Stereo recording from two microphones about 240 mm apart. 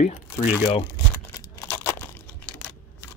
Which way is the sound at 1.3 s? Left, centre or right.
Centre.